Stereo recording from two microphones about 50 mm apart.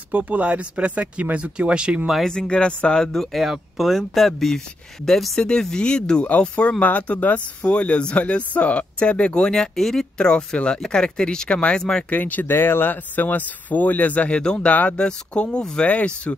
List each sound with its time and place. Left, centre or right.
0.1 s speech: right
2.2 s speech: centre
3.3 s speech: centre
10.1 s speech: centre
12.1 s speech: left
12.5 s speech: left
14.4 s speech: centre
14.7 s speech: left
15.0 s speech: left